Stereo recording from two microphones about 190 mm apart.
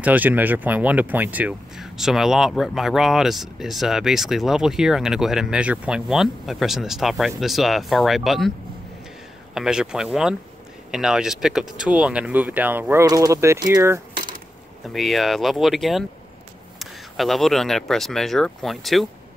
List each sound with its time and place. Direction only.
0.0 s speech: 10° right (ahead or behind)
14.1 s a sound: 45° right (ahead or behind)
14.9 s speech: centre (ahead or behind)